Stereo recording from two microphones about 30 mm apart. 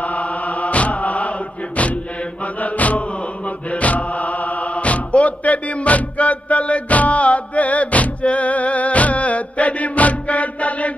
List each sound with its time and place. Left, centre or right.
0.0 s chant: left
2.4 s chant: left
3.4 s music: left